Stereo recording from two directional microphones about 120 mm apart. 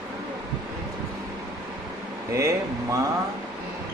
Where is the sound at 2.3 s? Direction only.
25° right (ahead or behind).